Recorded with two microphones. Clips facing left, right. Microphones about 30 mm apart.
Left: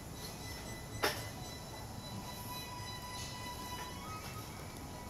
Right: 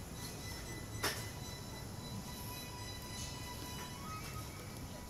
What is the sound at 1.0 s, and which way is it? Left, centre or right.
Train, left.